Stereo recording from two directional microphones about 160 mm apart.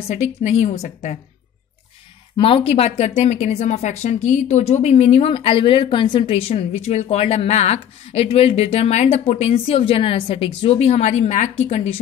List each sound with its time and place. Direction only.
0.1 s a woman's voice: 50° left (ahead or behind)
2.3 s speech: 35° left (ahead or behind)